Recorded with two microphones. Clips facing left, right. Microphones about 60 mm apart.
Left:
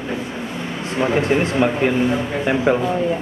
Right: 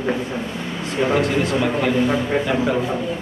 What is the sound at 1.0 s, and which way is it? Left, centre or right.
Speech, left.